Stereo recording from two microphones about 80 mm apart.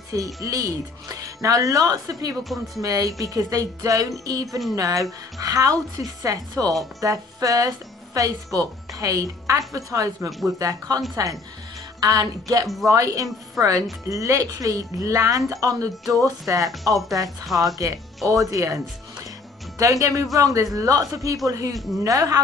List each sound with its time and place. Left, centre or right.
0.1 s a woman's voice: right
2.4 s speech: centre
2.8 s a woman's voice: right
12.0 s a woman's voice: right
17.5 s speech: centre
17.7 s a woman's voice: right
19.8 s a woman's voice: right